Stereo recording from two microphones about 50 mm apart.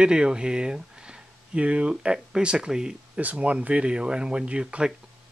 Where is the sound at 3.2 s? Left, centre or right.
Right.